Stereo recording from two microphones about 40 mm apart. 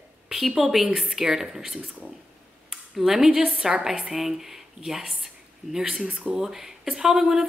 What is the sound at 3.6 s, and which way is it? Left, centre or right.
A woman's voice, centre.